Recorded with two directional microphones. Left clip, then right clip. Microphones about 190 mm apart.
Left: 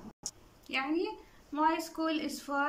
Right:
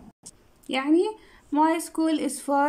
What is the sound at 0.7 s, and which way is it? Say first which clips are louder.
A woman's voice: right 10 dB; 40° right (ahead or behind).